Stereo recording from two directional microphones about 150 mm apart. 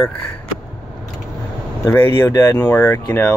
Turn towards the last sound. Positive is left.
turn(degrees=15)  # may be behind; listen again after turning